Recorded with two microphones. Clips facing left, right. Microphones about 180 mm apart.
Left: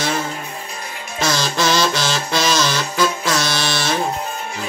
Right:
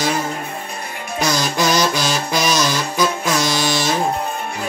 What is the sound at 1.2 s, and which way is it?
Music, 15° right (ahead or behind).